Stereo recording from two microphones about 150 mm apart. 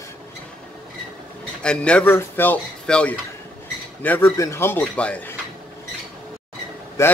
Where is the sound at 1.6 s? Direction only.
5° left (ahead or behind).